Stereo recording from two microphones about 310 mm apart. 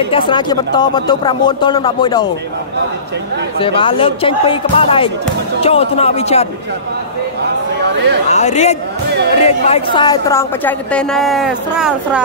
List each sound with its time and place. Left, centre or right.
0.1 s speech: centre
3.5 s speech: centre
8.3 s a woman's voice: left; by 12.2 s centre